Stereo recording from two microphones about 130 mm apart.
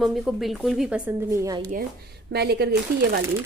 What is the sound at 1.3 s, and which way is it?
Speech, 25° right (ahead or behind).